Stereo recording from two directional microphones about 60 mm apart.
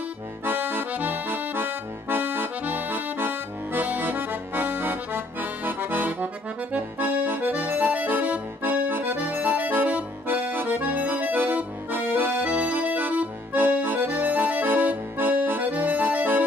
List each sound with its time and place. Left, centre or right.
0.5 s accordion: right